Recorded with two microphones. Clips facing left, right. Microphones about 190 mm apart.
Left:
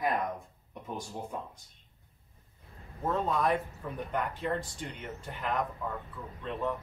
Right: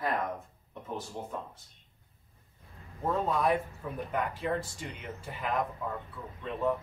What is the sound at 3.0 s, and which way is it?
A man's voice, 5° right (ahead or behind).